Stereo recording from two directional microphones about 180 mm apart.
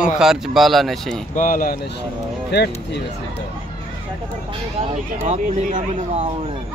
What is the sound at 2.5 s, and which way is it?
Speech, 65° left (ahead or behind).